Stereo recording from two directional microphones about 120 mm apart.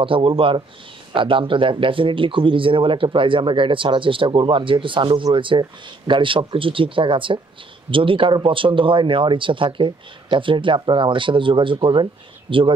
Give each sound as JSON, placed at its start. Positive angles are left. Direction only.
{"t": 0.0, "sound": "speech", "side_deg": -45}